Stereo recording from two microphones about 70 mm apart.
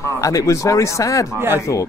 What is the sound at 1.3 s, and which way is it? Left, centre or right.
Speech, right.